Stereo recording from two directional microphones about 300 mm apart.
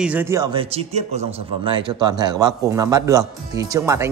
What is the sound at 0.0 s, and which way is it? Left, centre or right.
Speech, centre.